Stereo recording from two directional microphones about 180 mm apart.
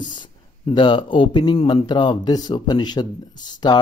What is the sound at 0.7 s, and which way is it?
Speech, 25° left (ahead or behind).